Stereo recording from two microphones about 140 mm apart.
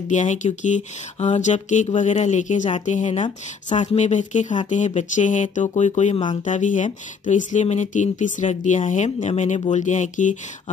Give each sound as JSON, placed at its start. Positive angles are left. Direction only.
{"t": 0.1, "sound": "speech", "side_deg": 60}